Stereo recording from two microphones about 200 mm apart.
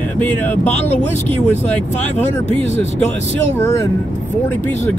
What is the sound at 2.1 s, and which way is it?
Speech, 35° left (ahead or behind).